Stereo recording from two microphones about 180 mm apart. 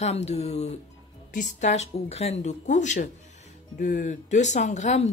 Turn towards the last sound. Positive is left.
turn(degrees=40)  # may be behind; listen again after turning